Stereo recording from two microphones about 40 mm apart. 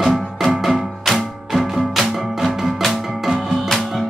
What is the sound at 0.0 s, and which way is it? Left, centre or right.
Music, centre.